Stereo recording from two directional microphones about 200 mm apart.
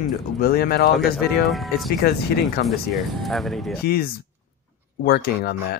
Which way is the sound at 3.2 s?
Centre (ahead or behind).